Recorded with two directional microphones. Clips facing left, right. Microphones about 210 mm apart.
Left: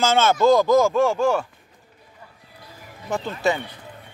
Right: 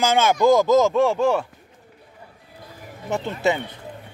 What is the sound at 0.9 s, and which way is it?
Speech, centre (ahead or behind).